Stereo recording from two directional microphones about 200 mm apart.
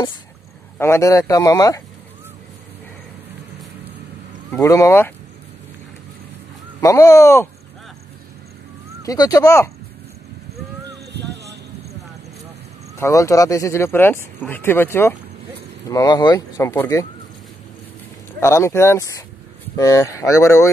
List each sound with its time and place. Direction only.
0.7 s speech: 15° left (ahead or behind)
4.5 s speech: 15° left (ahead or behind)
6.8 s speech: 15° left (ahead or behind)
9.0 s speech: 15° left (ahead or behind)
13.0 s speech: 15° left (ahead or behind)
18.4 s speech: 15° left (ahead or behind)